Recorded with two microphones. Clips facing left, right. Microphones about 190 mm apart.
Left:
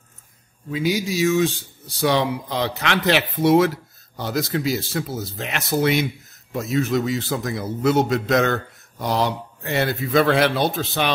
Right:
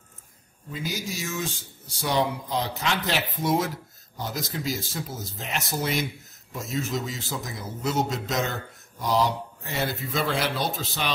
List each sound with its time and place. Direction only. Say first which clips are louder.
0.7 s a man's voice: left 10 dB; 80° left; by 11.1 s 65° left (ahead or behind)